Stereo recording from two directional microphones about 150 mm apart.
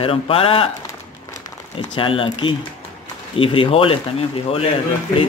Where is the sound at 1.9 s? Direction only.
35° left (ahead or behind).